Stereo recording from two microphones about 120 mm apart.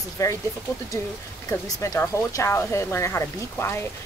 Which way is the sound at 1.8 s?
25° left (ahead or behind).